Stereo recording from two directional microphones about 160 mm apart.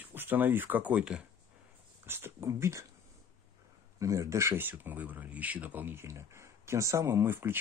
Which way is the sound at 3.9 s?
20° right (ahead or behind).